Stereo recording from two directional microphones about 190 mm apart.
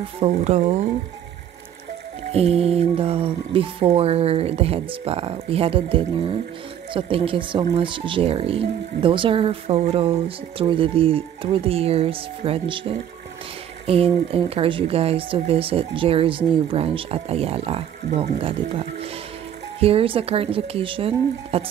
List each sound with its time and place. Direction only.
0.2 s speech: 35° right (ahead or behind)
2.3 s speech: 30° right (ahead or behind)